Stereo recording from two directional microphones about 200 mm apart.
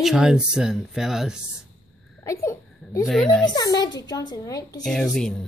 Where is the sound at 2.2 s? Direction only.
15° left (ahead or behind).